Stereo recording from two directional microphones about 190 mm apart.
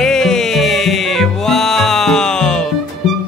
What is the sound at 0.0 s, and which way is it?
Music, 5° left (ahead or behind).